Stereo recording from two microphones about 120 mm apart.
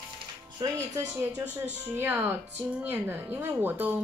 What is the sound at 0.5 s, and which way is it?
Speech, 25° right (ahead or behind).